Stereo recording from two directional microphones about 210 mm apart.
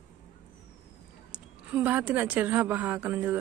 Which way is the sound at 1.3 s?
5° right (ahead or behind).